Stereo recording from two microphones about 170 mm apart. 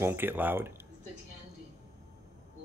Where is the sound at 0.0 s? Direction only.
10° right (ahead or behind).